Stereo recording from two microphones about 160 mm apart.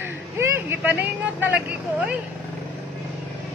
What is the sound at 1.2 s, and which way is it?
Speech, 10° right (ahead or behind).